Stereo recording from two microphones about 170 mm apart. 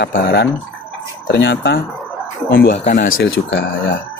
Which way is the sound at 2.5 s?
65° left (ahead or behind).